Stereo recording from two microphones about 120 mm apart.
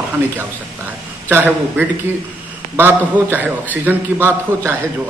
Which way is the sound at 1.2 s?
15° right (ahead or behind).